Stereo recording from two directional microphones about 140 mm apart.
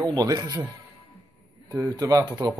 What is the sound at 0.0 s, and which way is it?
Speech, 30° right (ahead or behind).